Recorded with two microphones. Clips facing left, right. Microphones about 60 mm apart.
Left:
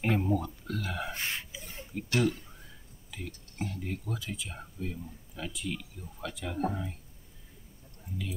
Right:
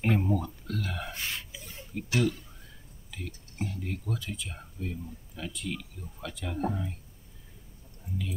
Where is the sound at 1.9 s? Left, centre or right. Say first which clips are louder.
Even; centre.